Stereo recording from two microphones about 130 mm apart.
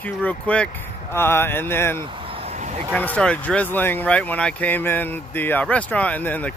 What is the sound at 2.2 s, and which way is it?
Vehicle, 50° right (ahead or behind).